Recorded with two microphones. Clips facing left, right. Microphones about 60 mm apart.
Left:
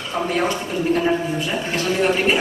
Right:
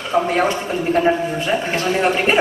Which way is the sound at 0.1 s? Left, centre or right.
Right.